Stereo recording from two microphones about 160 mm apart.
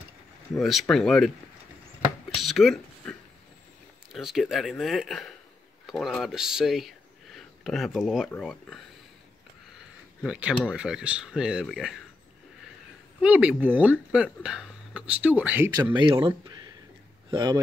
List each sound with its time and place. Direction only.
0.6 s speech: centre (ahead or behind)
2.3 s a sound: centre (ahead or behind)
4.1 s speech: centre (ahead or behind)
10.2 s speech: 5° right (ahead or behind)
13.2 s speech: 5° right (ahead or behind)
15.9 s speech: 30° right (ahead or behind)